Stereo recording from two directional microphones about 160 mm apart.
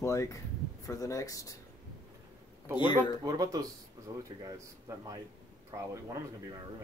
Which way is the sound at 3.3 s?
25° right (ahead or behind).